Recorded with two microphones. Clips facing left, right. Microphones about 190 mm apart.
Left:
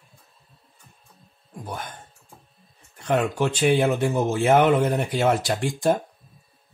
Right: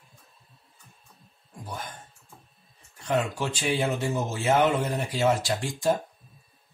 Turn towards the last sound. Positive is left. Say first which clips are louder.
# left 4 dB
turn(degrees=60)  # may be behind; listen again after turning